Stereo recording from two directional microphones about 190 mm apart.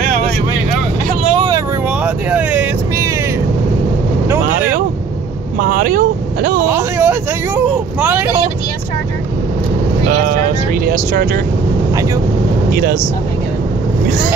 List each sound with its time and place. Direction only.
1.2 s vehicle: 25° right (ahead or behind)
2.0 s vehicle: 10° right (ahead or behind)
5.6 s vehicle: 50° right (ahead or behind)
6.7 s vehicle: 10° right (ahead or behind)
10.2 s vehicle: 50° right (ahead or behind)